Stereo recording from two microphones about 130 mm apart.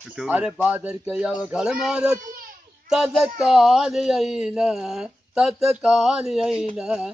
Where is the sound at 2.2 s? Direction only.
90° right.